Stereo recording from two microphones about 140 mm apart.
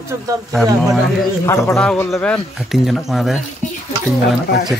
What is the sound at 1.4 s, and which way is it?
Speech, 20° left (ahead or behind).